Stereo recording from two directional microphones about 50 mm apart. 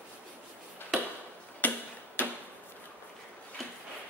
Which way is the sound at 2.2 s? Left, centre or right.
Left.